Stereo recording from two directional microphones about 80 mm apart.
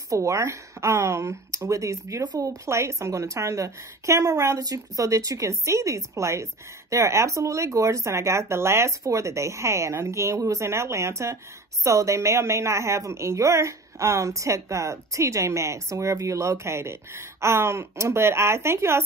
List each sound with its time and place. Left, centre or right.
0.1 s a woman's voice: right
2.2 s a woman's voice: right